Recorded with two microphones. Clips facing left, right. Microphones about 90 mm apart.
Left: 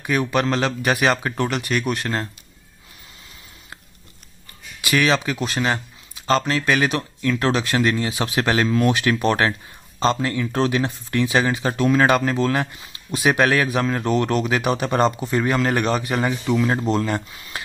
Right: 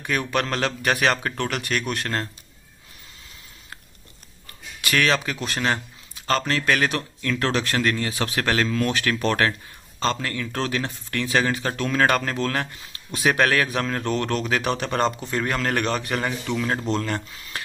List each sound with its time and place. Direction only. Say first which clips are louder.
0.0 s a man's voice: left 4 dB; 5° left (ahead or behind)
4.8 s a man's voice: left 3 dB; 5° left (ahead or behind)